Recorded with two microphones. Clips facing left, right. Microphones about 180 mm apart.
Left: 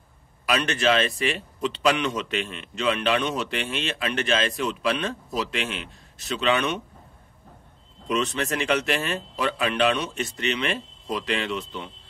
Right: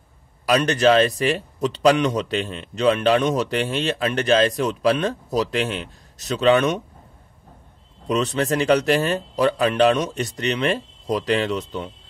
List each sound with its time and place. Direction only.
0.5 s speech: 40° right (ahead or behind)
8.1 s speech: 35° right (ahead or behind)